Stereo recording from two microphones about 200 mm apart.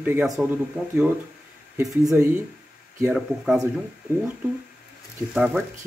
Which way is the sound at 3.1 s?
5° right (ahead or behind).